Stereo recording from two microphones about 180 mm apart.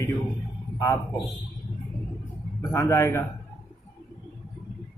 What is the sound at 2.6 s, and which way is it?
Speech, 15° left (ahead or behind).